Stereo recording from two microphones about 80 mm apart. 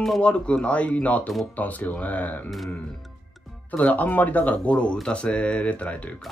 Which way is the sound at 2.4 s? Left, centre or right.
Centre.